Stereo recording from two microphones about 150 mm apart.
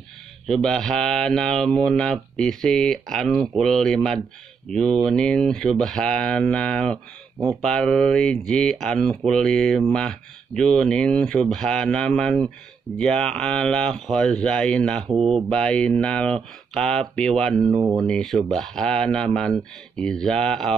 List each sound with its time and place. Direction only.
0.5 s speech: 5° left (ahead or behind)
17.7 s speech: 25° right (ahead or behind)
18.0 s speech: 5° left (ahead or behind)